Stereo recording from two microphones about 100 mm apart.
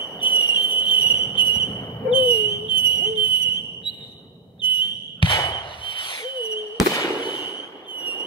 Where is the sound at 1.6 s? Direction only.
30° left (ahead or behind).